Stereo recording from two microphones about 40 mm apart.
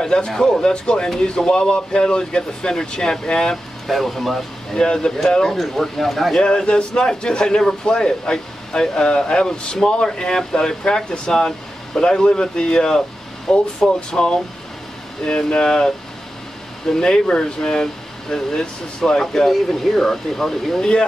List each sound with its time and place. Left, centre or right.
0.0 s speech: centre
3.8 s speech: centre
4.7 s speech: centre
6.4 s speech: left
16.9 s speech: centre